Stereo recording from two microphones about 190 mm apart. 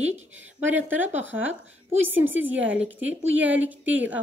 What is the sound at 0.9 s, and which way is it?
A woman's voice, 10° right (ahead or behind).